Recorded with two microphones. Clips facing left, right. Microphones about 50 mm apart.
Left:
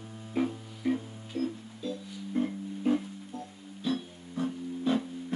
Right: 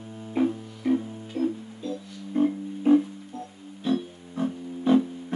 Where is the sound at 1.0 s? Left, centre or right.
Right.